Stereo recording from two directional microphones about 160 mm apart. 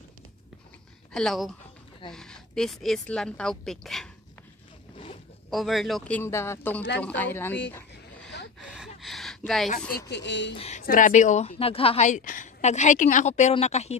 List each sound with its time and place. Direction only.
1.1 s a woman's voice: centre (ahead or behind)
4.9 s zipper: 35° left (ahead or behind)
5.5 s speech: centre (ahead or behind)
8.5 s gasp: 5° right (ahead or behind)
9.9 s speech: 90° left
10.5 s speech: 40° left (ahead or behind)
10.8 s a woman's voice: 55° left (ahead or behind)